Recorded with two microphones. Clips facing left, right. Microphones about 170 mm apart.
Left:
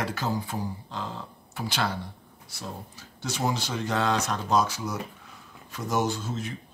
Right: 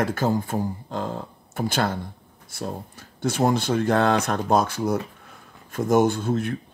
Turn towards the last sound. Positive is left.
turn(degrees=-55)  # may be behind; listen again after turning